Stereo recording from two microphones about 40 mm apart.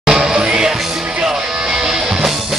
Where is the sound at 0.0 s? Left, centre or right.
Centre.